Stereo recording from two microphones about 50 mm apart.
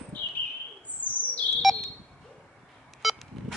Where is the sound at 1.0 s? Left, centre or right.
Left.